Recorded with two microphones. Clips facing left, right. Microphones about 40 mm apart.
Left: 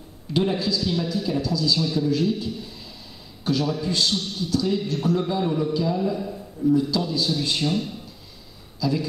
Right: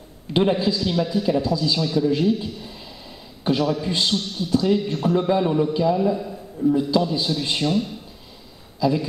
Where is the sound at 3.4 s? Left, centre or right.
Right.